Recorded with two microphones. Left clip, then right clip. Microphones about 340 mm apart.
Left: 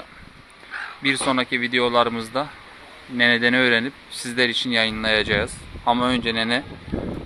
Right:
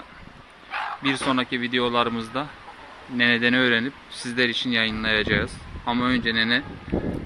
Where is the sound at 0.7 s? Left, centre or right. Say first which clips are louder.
Left 2 dB; centre.